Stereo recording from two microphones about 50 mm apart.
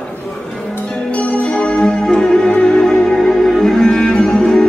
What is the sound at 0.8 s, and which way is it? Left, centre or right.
Music, centre.